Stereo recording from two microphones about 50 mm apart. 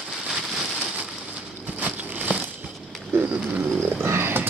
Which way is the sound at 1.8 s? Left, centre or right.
Right.